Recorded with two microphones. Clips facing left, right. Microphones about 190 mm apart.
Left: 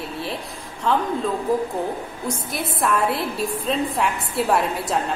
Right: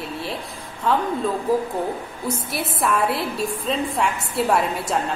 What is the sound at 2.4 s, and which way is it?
A woman's voice, 5° right (ahead or behind).